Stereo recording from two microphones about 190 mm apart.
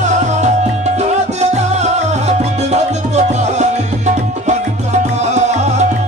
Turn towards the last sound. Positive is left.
turn(degrees=-35)  # may be behind; listen again after turning